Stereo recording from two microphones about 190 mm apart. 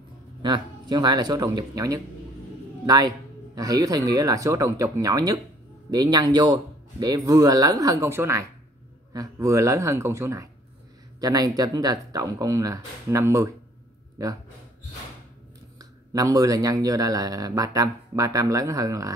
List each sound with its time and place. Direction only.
0.4 s speech: 25° right (ahead or behind)
3.5 s speech: 20° right (ahead or behind)
15.8 s speech: 20° right (ahead or behind)